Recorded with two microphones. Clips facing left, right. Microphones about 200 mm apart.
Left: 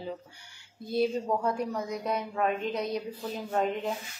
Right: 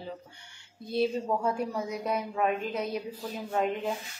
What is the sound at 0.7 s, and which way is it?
A woman's voice, centre (ahead or behind).